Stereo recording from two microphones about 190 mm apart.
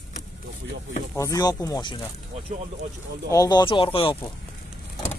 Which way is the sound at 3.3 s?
20° left (ahead or behind).